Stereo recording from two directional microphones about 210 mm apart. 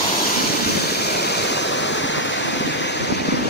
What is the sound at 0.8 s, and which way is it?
Waterfall, 50° left (ahead or behind).